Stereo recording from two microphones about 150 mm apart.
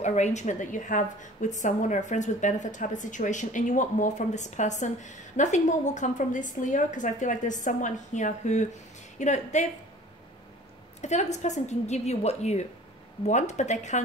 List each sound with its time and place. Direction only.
0.0 s a woman's voice: 50° left (ahead or behind)
11.0 s a woman's voice: 50° left (ahead or behind)